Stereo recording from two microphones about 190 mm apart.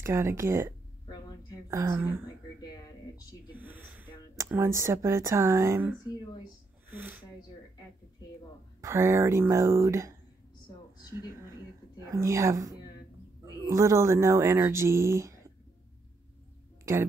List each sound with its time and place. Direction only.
0.0 s speech: 15° right (ahead or behind)
2.6 s a sound: 20° left (ahead or behind)
3.5 s snort: 10° right (ahead or behind)
4.4 s speech: 15° right (ahead or behind)
8.8 s speech: 15° right (ahead or behind)
12.0 s speech: 15° right (ahead or behind)